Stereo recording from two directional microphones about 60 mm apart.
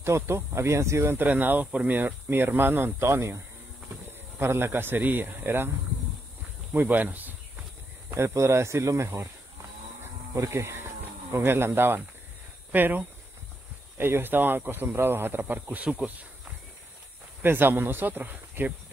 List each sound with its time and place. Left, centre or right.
0.0 s speech: right
1.1 s speech: right
2.0 s speech: right
4.4 s speech: right
6.7 s speech: right
8.1 s speech: right
10.3 s speech: right
17.4 s speech: right